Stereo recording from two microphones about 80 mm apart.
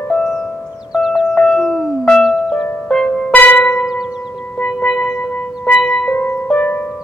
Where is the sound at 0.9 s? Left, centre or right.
Centre.